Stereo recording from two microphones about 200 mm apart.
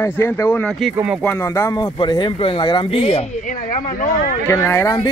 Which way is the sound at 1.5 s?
15° left (ahead or behind).